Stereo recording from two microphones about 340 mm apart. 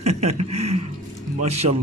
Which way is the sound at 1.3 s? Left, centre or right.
Centre.